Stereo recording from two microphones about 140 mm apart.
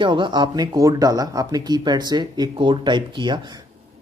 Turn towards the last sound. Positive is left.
turn(degrees=-35)  # may be behind; listen again after turning